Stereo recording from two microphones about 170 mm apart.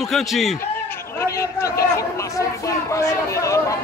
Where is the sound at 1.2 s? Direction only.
20° left (ahead or behind).